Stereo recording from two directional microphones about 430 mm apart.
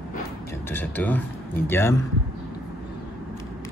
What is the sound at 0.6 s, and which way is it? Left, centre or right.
Speech, centre.